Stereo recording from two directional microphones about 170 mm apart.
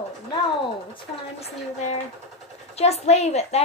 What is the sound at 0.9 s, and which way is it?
Speech, 35° left (ahead or behind).